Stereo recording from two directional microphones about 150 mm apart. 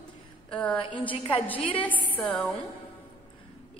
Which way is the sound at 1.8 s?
10° left (ahead or behind).